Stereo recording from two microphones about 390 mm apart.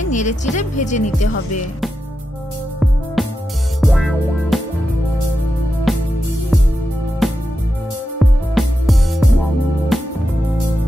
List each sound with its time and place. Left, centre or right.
0.0 s speech: centre
3.2 s music: centre
5.9 s music: centre
7.2 s music: centre